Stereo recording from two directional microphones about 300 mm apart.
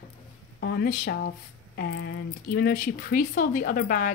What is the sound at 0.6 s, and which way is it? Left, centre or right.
Speech, left.